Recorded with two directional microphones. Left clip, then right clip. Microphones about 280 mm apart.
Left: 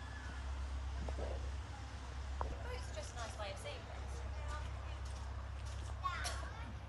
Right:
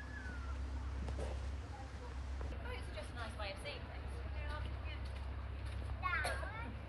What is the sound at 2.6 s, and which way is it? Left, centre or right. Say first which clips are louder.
Vehicle: even; left.